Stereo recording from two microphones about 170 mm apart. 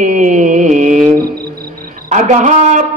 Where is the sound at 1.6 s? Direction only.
60° right (ahead or behind).